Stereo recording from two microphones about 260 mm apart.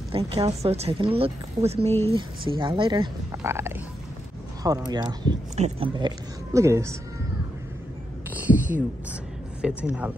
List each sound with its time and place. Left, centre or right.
0.1 s a woman's voice: right
8.3 s a sound: centre
9.6 s speech: centre